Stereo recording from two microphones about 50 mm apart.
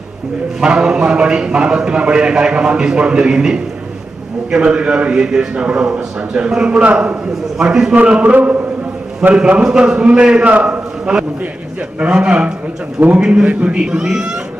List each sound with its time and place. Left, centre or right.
0.6 s a man's voice: centre
7.5 s speech: centre
7.9 s a man's voice: right
12.0 s a man's voice: right